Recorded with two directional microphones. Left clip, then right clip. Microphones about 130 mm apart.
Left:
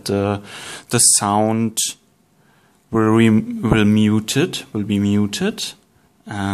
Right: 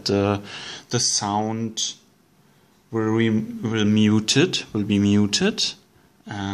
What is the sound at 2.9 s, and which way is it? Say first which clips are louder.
Speech: left 7 dB; 60° left (ahead or behind).